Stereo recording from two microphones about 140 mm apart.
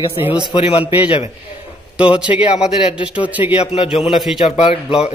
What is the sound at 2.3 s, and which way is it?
Speech, 40° left (ahead or behind).